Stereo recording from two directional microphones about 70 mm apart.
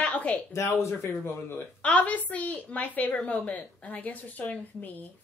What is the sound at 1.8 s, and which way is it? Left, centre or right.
A woman's voice, left.